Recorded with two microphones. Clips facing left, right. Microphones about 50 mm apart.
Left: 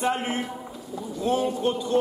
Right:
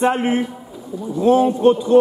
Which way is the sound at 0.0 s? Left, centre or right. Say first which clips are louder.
Right 8 dB; right.